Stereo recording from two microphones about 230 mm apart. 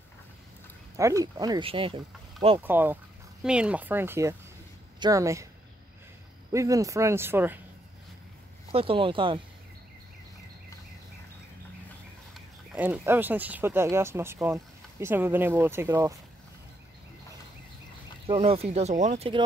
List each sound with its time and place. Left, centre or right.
0.9 s speech: centre
2.6 s speech: centre
6.5 s speech: centre
8.7 s speech: right
12.4 s speech: centre
18.2 s speech: right